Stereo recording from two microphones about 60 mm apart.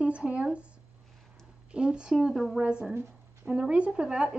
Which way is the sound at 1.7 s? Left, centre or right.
Centre.